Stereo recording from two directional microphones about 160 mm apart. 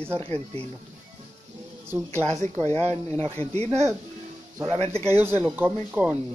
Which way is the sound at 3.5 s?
45° right (ahead or behind).